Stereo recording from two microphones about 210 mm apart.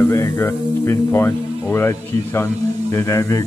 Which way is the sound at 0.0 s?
10° left (ahead or behind).